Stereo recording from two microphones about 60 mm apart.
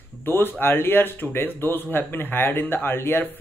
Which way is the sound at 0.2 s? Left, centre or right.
Left.